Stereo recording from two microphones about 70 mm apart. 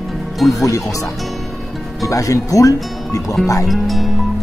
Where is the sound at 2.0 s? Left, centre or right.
Left.